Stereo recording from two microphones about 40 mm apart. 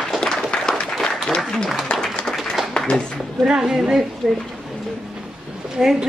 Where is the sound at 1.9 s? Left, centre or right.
Left.